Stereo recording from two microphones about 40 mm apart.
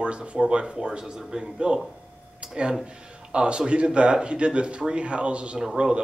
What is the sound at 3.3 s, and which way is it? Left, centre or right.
Speech, right.